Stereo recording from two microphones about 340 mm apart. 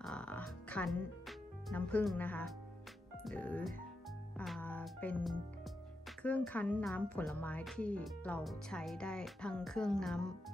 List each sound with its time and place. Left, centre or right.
0.0 s speech: centre
4.4 s music: centre
6.2 s speech: centre